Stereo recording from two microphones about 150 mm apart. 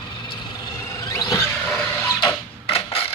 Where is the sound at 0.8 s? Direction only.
20° left (ahead or behind).